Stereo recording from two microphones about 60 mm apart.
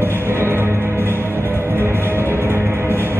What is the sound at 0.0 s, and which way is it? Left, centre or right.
Music, right.